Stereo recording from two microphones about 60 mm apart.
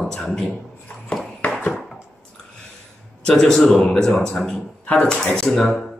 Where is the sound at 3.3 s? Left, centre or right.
Centre.